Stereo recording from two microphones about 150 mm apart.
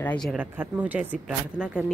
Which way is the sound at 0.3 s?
10° right (ahead or behind).